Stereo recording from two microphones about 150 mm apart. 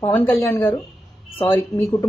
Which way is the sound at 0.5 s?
20° left (ahead or behind).